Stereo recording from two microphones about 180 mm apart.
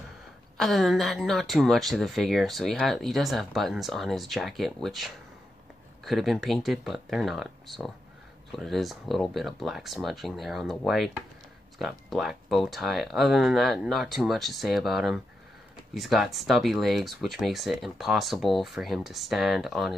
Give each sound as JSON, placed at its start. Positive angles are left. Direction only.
{"t": 0.6, "sound": "speech", "side_deg": 0}